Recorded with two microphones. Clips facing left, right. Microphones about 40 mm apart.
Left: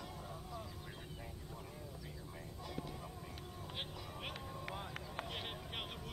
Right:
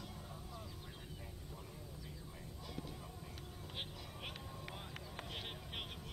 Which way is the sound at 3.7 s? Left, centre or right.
Centre.